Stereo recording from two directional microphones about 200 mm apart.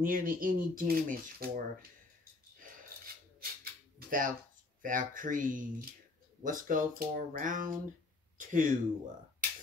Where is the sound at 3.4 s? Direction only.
45° right (ahead or behind).